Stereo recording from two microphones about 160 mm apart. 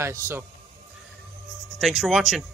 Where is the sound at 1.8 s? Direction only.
Centre (ahead or behind).